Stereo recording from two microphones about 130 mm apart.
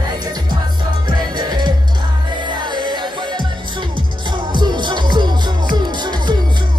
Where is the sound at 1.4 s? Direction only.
30° right (ahead or behind).